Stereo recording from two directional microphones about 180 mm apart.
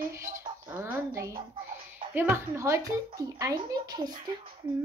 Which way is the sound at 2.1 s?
10° right (ahead or behind).